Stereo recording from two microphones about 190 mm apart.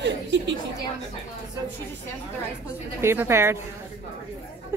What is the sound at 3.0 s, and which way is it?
Speech, 15° right (ahead or behind).